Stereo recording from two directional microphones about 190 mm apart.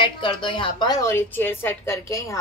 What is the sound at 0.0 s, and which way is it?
Speech, 25° left (ahead or behind).